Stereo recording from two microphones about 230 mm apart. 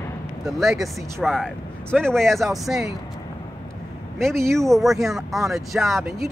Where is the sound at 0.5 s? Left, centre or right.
Centre.